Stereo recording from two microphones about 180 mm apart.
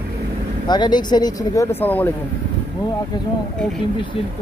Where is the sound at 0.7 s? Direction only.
25° left (ahead or behind).